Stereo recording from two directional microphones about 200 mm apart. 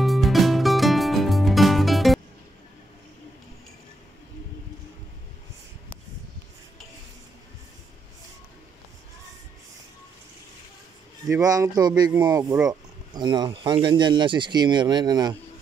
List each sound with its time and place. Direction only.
0.0 s music: centre (ahead or behind)
11.2 s speech: 15° right (ahead or behind)